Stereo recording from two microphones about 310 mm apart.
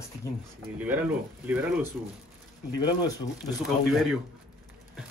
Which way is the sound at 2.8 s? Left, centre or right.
Centre.